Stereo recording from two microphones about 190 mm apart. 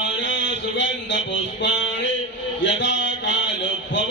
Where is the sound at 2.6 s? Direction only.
70° left (ahead or behind).